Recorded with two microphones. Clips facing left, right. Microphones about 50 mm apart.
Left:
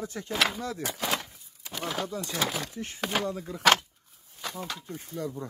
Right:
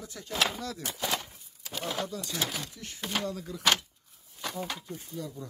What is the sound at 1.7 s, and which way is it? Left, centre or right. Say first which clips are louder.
Speech: left 1 dB; centre.